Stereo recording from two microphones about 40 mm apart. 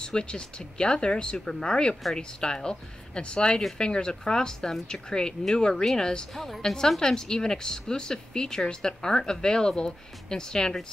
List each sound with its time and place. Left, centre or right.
0.0 s a woman's voice: left